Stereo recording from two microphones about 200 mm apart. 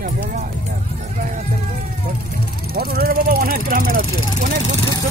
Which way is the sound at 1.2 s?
45° right (ahead or behind).